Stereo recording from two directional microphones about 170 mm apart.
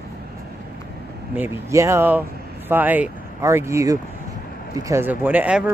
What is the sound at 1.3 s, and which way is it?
Speech, 15° right (ahead or behind).